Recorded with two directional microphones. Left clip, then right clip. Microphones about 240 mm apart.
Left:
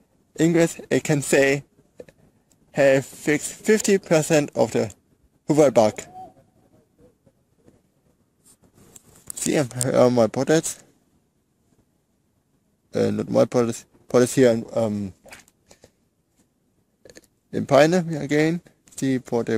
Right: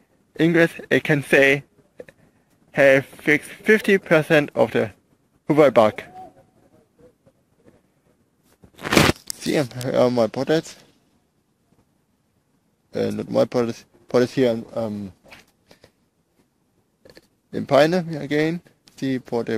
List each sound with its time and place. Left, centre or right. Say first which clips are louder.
0.3 s speech: right 2 dB; centre
9.4 s speech: left 5 dB; centre
12.9 s speech: left 1 dB; centre
15.7 s shuffling cards: right 1 dB; centre
17.0 s speech: left 1 dB; centre